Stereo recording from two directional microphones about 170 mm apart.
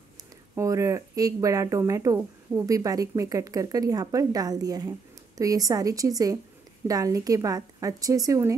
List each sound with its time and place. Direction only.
0.6 s speech: 20° right (ahead or behind)